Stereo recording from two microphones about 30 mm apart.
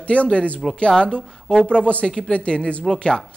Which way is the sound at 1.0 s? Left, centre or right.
Left.